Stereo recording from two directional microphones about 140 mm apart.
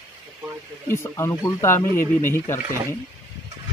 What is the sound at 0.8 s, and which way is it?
Speech, 20° left (ahead or behind).